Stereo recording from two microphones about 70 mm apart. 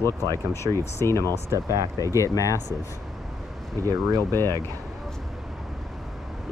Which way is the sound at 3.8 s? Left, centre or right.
Right.